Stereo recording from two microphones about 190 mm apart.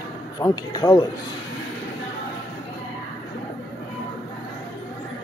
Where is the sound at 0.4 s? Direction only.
20° left (ahead or behind).